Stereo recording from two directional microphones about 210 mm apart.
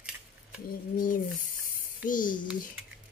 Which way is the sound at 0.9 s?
40° left (ahead or behind).